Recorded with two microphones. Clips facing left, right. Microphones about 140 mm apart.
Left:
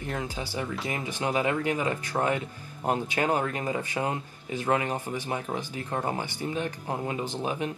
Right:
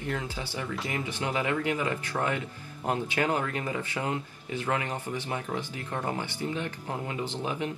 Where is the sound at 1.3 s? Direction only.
20° left (ahead or behind).